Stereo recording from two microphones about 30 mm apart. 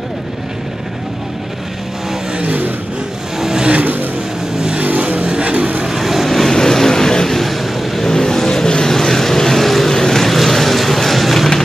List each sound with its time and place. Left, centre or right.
3.3 s vehicle: centre
3.8 s vehicle: right
4.8 s vehicle: right
5.2 s music: right
5.9 s vehicle: centre
6.5 s vehicle: centre
7.3 s vehicle: centre
8.0 s vehicle: left
8.9 s vehicle: centre
9.9 s vehicle: centre